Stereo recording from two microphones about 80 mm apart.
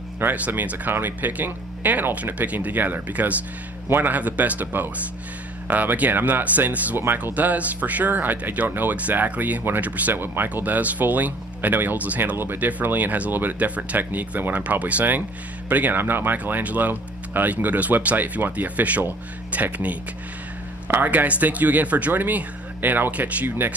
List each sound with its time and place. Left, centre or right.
0.2 s speech: right